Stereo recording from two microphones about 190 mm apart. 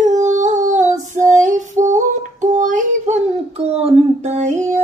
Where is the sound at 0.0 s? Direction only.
40° right (ahead or behind).